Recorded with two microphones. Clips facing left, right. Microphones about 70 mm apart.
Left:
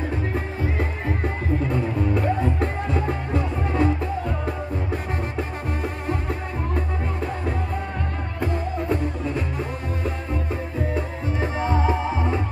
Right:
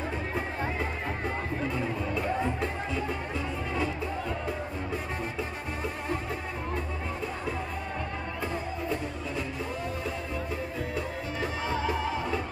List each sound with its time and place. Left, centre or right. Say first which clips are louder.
1.7 s music: left 7 dB; left
8.4 s music: left 9 dB; left
11.3 s music: left 8 dB; left